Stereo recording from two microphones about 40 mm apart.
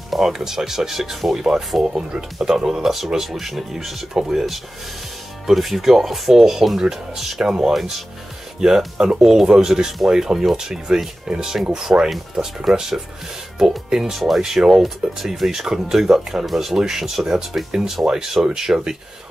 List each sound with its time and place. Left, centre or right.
0.1 s speech: centre
13.6 s speech: centre